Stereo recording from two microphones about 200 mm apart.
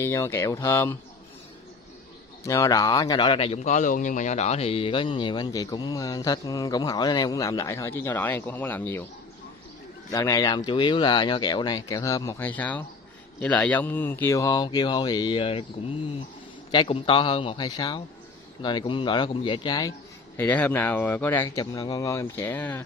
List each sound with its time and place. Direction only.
0.0 s speech: 15° left (ahead or behind)
2.4 s speech: 15° left (ahead or behind)
10.1 s speech: 15° left (ahead or behind)
16.7 s speech: 25° left (ahead or behind)
20.3 s speech: 10° left (ahead or behind)